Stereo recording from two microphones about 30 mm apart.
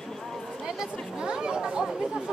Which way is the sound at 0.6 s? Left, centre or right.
Right.